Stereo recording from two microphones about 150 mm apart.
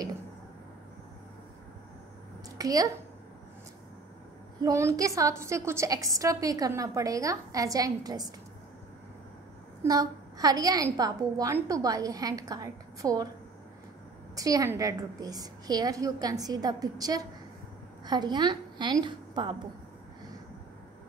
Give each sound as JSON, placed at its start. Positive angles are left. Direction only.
{"t": 2.5, "sound": "a woman's voice", "side_deg": -25}
{"t": 4.6, "sound": "a woman's voice", "side_deg": -20}
{"t": 9.8, "sound": "a woman's voice", "side_deg": -25}
{"t": 14.3, "sound": "a woman's voice", "side_deg": -25}